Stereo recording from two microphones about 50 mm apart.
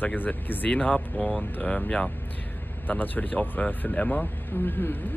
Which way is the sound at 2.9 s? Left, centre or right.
Left.